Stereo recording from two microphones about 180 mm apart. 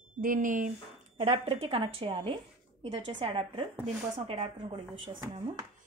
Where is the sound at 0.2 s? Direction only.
45° right (ahead or behind).